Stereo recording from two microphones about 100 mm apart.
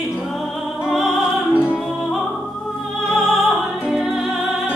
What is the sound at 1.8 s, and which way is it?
Music, centre (ahead or behind).